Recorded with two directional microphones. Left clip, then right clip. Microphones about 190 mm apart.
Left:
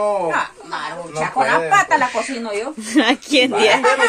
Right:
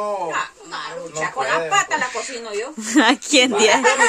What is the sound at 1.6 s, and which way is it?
Speech, 20° left (ahead or behind).